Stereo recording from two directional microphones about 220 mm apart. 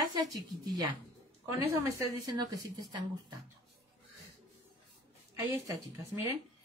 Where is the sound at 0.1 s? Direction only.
15° right (ahead or behind).